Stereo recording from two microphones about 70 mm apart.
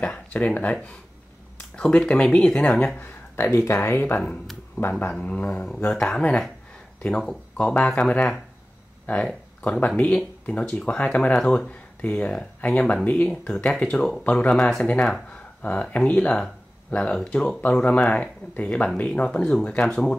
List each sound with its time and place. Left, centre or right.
0.0 s a sound: centre
1.8 s speech: centre
3.4 s speech: left
5.2 s speech: left
7.7 s speech: left
8.0 s speech: centre
14.5 s speech: centre
14.8 s speech: centre